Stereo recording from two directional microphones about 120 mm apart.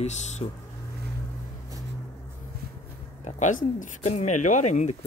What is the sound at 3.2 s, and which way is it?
Speech, 90° left.